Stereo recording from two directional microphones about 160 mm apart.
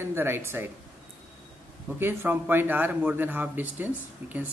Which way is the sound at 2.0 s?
15° right (ahead or behind).